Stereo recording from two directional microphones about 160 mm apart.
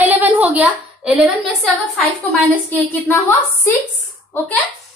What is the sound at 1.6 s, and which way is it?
A woman's voice, 5° left (ahead or behind).